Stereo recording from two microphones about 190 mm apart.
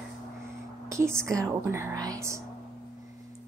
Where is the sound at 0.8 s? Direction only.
15° right (ahead or behind).